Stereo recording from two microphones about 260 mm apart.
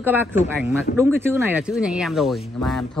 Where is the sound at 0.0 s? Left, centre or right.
Centre.